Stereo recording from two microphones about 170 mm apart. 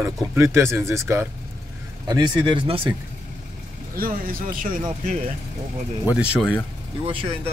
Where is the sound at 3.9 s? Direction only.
60° right (ahead or behind).